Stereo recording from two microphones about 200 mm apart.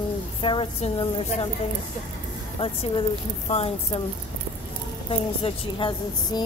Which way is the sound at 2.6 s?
25° left (ahead or behind).